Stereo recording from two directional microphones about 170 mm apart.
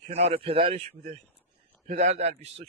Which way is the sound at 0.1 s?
35° right (ahead or behind).